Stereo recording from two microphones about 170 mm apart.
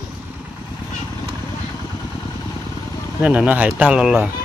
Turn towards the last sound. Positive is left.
turn(degrees=-5)  # may be behind; listen again after turning